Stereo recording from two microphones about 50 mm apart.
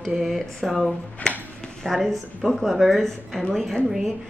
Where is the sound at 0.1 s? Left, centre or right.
Centre.